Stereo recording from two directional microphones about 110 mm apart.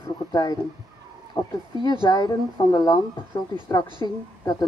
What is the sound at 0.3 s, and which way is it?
Speech, 35° left (ahead or behind).